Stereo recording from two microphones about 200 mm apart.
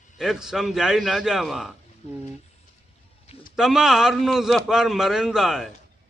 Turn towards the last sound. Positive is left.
turn(degrees=0)  # may be behind; listen again after turning